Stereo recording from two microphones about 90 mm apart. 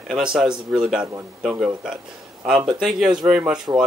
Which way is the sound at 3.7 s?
15° right (ahead or behind).